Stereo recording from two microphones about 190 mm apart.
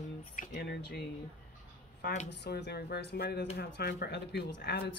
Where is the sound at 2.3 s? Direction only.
60° left (ahead or behind).